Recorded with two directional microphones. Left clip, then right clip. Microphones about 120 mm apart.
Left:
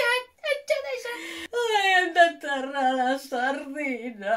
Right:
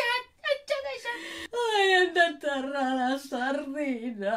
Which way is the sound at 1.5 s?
15° right (ahead or behind).